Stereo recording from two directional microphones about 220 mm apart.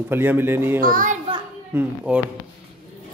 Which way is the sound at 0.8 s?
40° right (ahead or behind).